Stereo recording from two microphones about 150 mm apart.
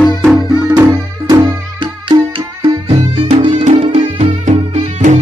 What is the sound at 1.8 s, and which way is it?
Music, 35° right (ahead or behind).